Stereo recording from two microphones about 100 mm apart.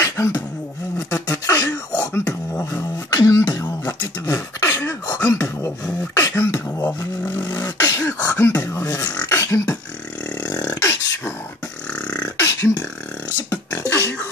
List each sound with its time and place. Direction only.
0.0 s beatboxing: 30° left (ahead or behind)
1.3 s throat clearing: 30° left (ahead or behind)
1.9 s beatboxing: 40° left (ahead or behind)
2.2 s beatboxing: 15° left (ahead or behind)
3.1 s beatboxing: 35° left (ahead or behind)
4.3 s a sound: 30° left (ahead or behind)
6.1 s beatboxing: 30° left (ahead or behind)
9.1 s beatboxing: 20° left (ahead or behind)
10.4 s beatboxing: 40° left (ahead or behind)
11.9 s beatboxing: 10° left (ahead or behind)
12.4 s beatboxing: 30° left (ahead or behind)